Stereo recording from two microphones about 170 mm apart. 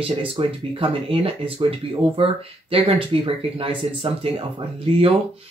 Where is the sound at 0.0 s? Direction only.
35° right (ahead or behind).